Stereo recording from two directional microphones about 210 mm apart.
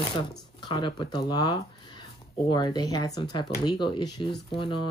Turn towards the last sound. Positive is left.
turn(degrees=25)  # may be behind; listen again after turning